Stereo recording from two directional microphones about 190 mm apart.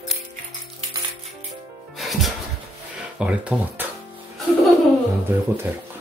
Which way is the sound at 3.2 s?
5° right (ahead or behind).